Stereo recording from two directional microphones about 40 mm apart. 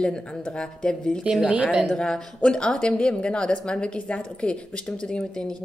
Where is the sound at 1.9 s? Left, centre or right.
Left.